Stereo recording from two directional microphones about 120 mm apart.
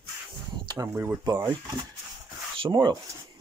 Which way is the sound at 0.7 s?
20° right (ahead or behind).